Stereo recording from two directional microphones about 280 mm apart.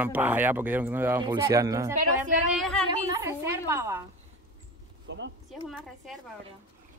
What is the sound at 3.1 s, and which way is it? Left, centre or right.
Speech, centre.